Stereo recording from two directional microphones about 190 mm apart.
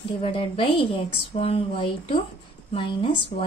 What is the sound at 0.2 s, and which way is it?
A woman's voice, 30° left (ahead or behind).